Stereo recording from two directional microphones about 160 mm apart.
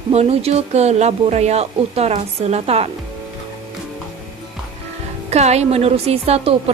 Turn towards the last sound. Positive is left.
turn(degrees=-35)  # may be behind; listen again after turning